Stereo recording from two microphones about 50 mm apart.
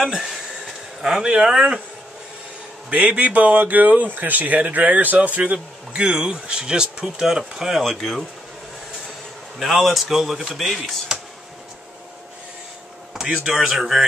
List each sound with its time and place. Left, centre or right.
0.0 s speech: centre
2.9 s speech: right
5.9 s speech: centre
9.6 s speech: centre
11.1 s a sound: centre
13.1 s speech: centre